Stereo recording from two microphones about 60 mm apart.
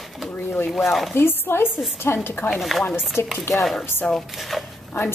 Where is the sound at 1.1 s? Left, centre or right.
Left.